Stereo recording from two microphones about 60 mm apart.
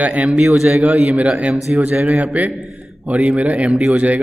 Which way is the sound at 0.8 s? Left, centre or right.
Centre.